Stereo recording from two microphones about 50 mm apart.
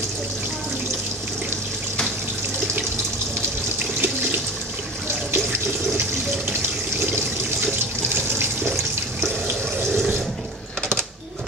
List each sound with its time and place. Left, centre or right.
3.8 s water: right
5.3 s water: right
8.4 s water: right